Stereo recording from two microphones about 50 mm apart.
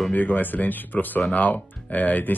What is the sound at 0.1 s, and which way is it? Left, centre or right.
Speech, left.